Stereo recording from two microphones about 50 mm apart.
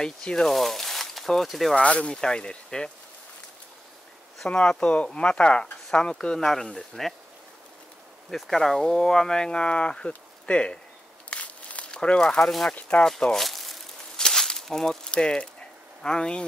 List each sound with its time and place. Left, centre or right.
0.0 s speech: centre
0.5 s speech: centre
1.8 s speech: left
4.5 s speech: left; by 7.2 s centre
8.3 s speech: centre
11.2 s a sound: left
12.4 s speech: centre
14.1 s a sound: centre
16.0 s speech: centre